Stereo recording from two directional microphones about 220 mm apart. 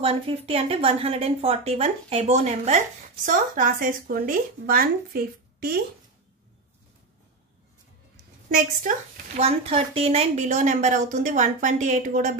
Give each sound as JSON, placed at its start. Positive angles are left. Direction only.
{"t": 0.0, "sound": "a woman's voice", "side_deg": -25}
{"t": 9.4, "sound": "a woman's voice", "side_deg": -25}